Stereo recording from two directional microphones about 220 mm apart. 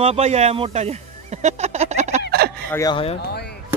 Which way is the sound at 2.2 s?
45° right (ahead or behind).